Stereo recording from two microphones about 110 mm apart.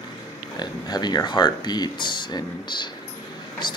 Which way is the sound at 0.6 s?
40° left (ahead or behind).